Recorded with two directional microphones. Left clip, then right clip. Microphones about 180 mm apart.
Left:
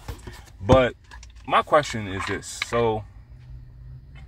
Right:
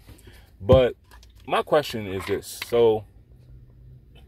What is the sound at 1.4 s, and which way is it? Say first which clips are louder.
Speech: left 2 dB; 25° right (ahead or behind).